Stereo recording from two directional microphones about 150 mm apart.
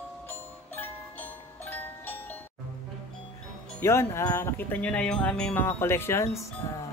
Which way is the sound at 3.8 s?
15° left (ahead or behind).